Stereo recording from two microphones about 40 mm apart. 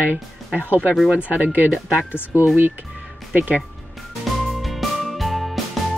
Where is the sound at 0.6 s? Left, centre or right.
Right.